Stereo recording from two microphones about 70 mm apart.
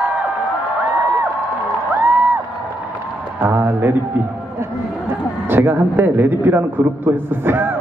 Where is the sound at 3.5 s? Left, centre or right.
Right.